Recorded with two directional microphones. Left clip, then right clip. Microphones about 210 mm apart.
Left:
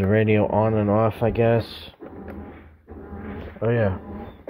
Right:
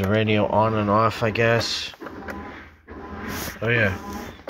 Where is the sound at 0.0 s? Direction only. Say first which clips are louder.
Left 1 dB; 20° left (ahead or behind).